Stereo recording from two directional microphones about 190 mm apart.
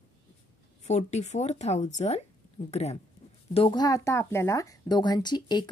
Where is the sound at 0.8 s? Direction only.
35° left (ahead or behind).